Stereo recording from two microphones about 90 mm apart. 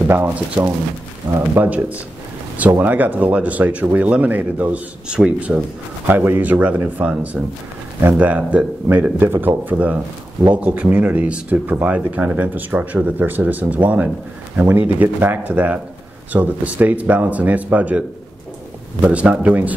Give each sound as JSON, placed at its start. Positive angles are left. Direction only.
{"t": 0.0, "sound": "speech", "side_deg": -15}
{"t": 6.0, "sound": "speech", "side_deg": -25}